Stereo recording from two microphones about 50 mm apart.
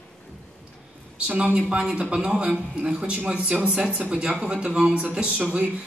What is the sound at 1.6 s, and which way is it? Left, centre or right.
A woman's voice, centre.